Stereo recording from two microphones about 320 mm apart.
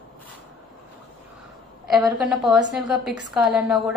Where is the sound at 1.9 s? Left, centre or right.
Centre.